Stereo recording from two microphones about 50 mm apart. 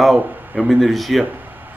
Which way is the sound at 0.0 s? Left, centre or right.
Centre.